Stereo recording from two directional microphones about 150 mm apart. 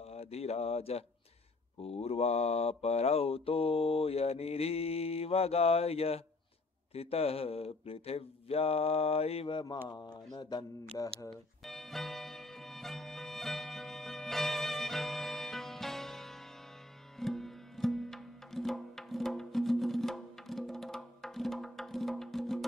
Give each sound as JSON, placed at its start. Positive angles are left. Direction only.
{"t": 0.0, "sound": "speech", "side_deg": 45}
{"t": 1.8, "sound": "mantra", "side_deg": 40}
{"t": 9.8, "sound": "speech", "side_deg": 25}
{"t": 11.6, "sound": "music", "side_deg": 0}